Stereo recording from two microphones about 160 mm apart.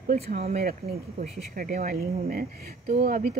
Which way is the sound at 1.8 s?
70° right (ahead or behind).